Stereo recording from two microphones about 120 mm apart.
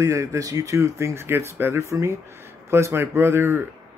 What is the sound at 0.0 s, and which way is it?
Speech, 25° right (ahead or behind).